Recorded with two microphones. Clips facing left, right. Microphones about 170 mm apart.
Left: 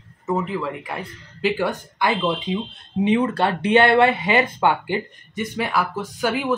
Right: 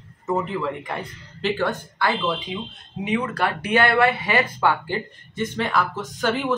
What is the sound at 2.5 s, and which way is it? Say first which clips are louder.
Speech: left 6 dB; 25° left (ahead or behind).